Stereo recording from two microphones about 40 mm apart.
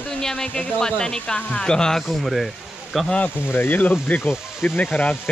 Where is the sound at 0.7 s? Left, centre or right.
Centre.